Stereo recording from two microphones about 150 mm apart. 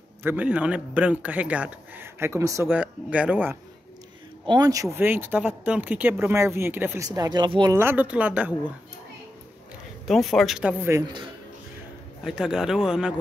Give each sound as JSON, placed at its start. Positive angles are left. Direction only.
{"t": 0.2, "sound": "speech", "side_deg": -10}
{"t": 2.7, "sound": "speech", "side_deg": -10}
{"t": 4.5, "sound": "speech", "side_deg": -25}
{"t": 7.1, "sound": "speech", "side_deg": -25}
{"t": 7.7, "sound": "speech", "side_deg": -15}
{"t": 10.0, "sound": "speech", "side_deg": 0}
{"t": 10.9, "sound": "speech", "side_deg": -25}
{"t": 12.2, "sound": "speech", "side_deg": -5}